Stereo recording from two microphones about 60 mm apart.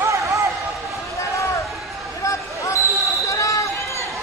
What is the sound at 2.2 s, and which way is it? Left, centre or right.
Basketball bounce, left.